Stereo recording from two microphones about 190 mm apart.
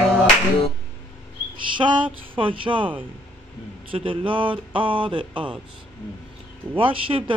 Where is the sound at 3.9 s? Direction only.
30° right (ahead or behind).